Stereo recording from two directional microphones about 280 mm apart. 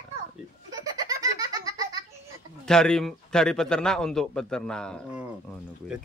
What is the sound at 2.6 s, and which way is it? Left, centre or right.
A man's voice, centre.